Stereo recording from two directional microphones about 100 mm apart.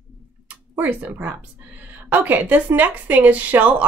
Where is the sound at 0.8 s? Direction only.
20° right (ahead or behind).